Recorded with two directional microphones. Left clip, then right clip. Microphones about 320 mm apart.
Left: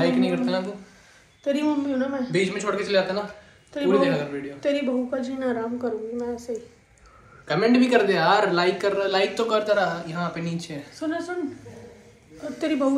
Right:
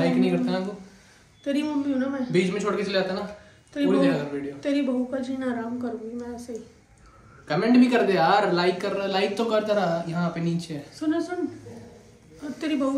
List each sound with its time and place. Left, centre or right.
0.0 s a sound: centre
1.4 s a woman's voice: centre
2.3 s a man's voice: centre
3.7 s a woman's voice: centre
7.4 s a man's voice: centre
12.4 s a woman's voice: centre